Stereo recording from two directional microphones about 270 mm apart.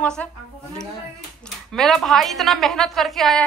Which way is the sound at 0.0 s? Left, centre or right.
Centre.